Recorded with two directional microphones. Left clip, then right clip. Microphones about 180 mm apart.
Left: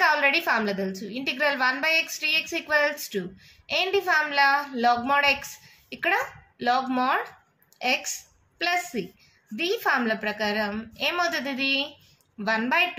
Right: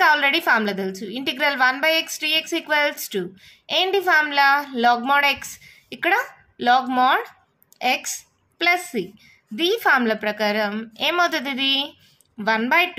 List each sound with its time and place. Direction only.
0.0 s a woman's voice: 40° right (ahead or behind)